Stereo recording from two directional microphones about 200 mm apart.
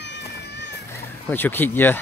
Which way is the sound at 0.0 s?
60° left (ahead or behind).